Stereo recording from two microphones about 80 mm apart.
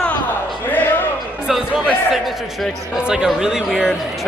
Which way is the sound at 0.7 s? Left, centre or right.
Left.